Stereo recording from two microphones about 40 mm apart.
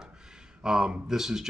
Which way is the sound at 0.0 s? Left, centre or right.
Centre.